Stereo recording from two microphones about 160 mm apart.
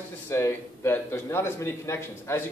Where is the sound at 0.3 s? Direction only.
15° left (ahead or behind).